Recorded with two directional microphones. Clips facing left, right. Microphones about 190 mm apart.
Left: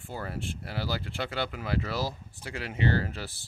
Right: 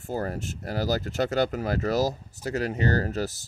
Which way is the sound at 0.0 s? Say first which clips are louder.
Right 6 dB; 40° right (ahead or behind).